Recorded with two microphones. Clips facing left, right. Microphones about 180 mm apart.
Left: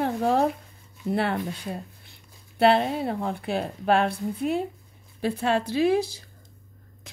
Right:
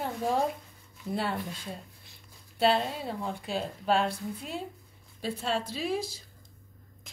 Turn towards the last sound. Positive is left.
turn(degrees=70)  # may be behind; listen again after turning